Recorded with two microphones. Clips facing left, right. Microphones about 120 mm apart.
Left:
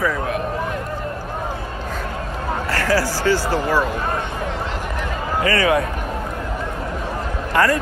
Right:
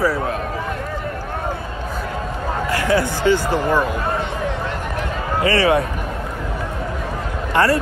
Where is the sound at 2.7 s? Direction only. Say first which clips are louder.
Right 1 dB; 20° right (ahead or behind).